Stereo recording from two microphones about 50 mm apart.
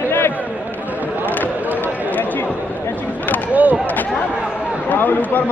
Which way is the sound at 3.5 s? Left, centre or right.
Right.